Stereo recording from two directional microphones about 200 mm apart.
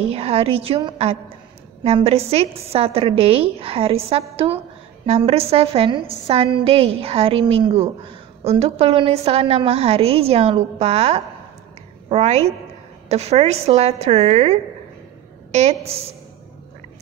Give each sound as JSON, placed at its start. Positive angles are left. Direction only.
{"t": 0.0, "sound": "a woman's voice", "side_deg": -30}